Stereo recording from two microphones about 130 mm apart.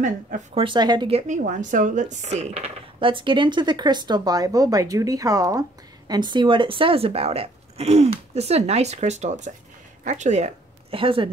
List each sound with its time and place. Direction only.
0.6 s speech: 35° right (ahead or behind)
1.2 s speech: 75° right (ahead or behind); by 11.0 s 60° right (ahead or behind)
11.0 s speech: 45° right (ahead or behind)